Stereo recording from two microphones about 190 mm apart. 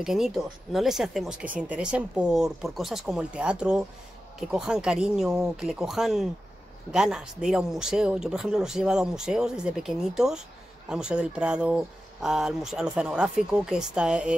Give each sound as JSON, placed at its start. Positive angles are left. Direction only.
{"t": 0.0, "sound": "speech", "side_deg": 0}